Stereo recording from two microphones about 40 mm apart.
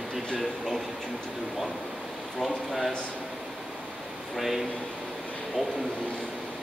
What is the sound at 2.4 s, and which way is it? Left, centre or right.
Speech, centre.